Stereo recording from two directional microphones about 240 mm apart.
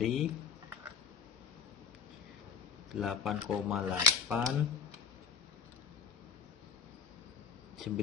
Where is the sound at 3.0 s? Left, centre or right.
Centre.